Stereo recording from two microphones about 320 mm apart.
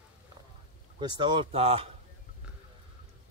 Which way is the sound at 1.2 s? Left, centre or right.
Centre.